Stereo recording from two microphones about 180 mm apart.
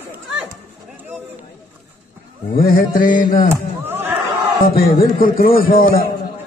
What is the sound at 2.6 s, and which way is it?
Speech, 50° left (ahead or behind).